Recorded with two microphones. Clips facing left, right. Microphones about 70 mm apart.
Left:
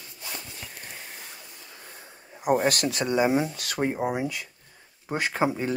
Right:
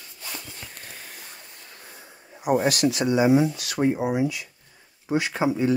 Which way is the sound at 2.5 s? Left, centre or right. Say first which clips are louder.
Right 3 dB; left.